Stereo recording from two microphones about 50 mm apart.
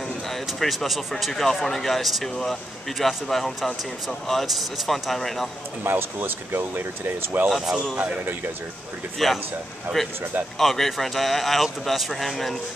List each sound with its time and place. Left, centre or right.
0.3 s a man's voice: centre
5.9 s speech: right
7.5 s a man's voice: centre
7.9 s a man's voice: centre
9.2 s a man's voice: centre
10.6 s a man's voice: centre